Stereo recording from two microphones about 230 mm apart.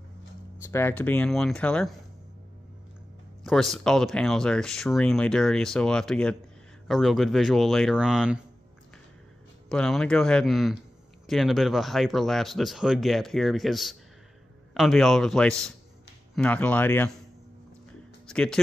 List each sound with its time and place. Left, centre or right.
0.7 s speech: centre
3.4 s speech: centre
9.7 s speech: centre
18.2 s music: centre